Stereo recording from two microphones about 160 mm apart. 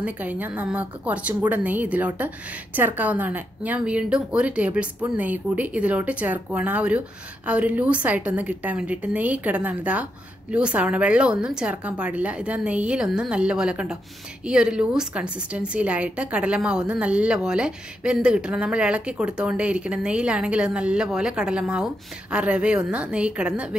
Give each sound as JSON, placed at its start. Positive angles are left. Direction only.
{"t": 0.0, "sound": "a woman's voice", "side_deg": -10}